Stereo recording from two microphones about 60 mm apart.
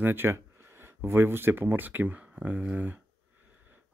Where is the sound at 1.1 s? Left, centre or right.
Right.